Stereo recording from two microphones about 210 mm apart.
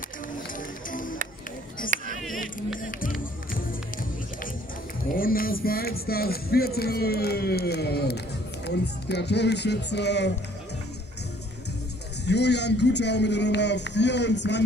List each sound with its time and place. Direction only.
1.9 s a sound: 40° right (ahead or behind)
2.8 s music: 40° left (ahead or behind)
5.1 s speech: 45° left (ahead or behind)
12.3 s a man's voice: 55° left (ahead or behind)